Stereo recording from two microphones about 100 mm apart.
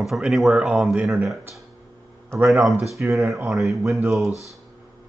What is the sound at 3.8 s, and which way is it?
Speech, 30° right (ahead or behind).